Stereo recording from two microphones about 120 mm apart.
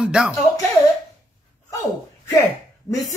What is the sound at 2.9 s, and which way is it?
Speech, 30° left (ahead or behind).